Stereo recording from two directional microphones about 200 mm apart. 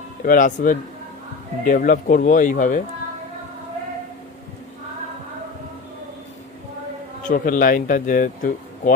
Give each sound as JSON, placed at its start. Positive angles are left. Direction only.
{"t": 0.2, "sound": "speech", "side_deg": 45}
{"t": 7.2, "sound": "speech", "side_deg": 45}